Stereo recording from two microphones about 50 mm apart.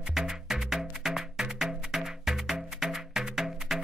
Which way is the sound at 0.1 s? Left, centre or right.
Centre.